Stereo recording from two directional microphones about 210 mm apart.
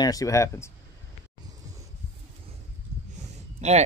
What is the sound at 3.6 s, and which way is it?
Speech, 30° right (ahead or behind).